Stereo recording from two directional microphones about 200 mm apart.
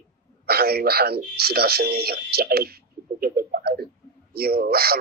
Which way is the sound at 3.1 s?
50° right (ahead or behind).